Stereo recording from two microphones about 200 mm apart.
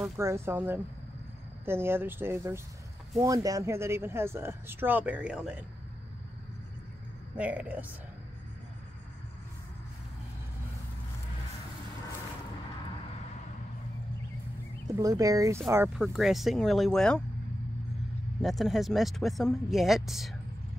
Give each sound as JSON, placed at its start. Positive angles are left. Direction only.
{"t": 0.2, "sound": "speech", "side_deg": -15}
{"t": 7.3, "sound": "speech", "side_deg": -5}
{"t": 15.0, "sound": "speech", "side_deg": -15}
{"t": 16.0, "sound": "speech", "side_deg": 0}
{"t": 18.4, "sound": "speech", "side_deg": 0}